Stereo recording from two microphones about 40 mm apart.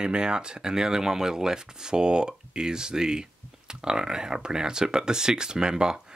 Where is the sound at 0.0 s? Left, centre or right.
Right.